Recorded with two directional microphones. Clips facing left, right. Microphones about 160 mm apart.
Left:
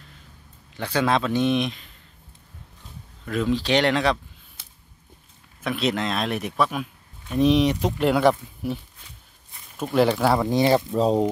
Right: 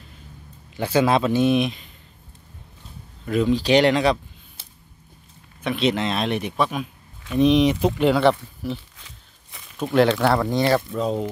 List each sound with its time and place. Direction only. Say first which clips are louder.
0.7 s speech: right 4 dB; 10° right (ahead or behind)
3.3 s speech: right 4 dB; centre (ahead or behind)
5.6 s speech: right 3 dB; centre (ahead or behind)
9.8 s speech: right 2 dB; 5° left (ahead or behind)
10.9 s speech: left 4 dB; 35° left (ahead or behind)